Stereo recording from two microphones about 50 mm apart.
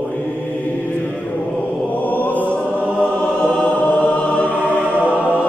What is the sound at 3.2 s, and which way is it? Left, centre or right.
Music, centre.